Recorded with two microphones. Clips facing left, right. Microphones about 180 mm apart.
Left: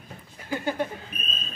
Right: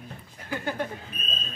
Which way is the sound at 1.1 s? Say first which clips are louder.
Left 1 dB; 20° left (ahead or behind).